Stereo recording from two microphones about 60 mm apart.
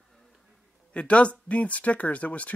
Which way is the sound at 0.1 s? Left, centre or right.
Centre.